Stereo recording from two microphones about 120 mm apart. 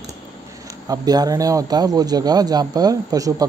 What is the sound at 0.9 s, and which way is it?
Speech, 30° right (ahead or behind).